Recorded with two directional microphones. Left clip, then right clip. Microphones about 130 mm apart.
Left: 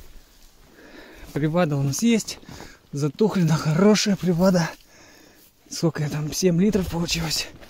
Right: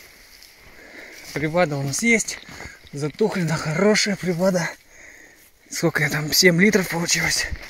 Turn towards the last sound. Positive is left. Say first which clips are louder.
# right 6 dB
turn(degrees=20)  # may be behind; listen again after turning